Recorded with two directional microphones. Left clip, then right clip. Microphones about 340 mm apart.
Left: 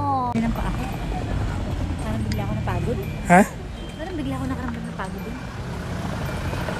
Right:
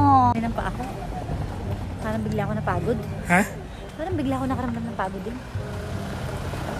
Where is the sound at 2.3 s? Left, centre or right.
Centre.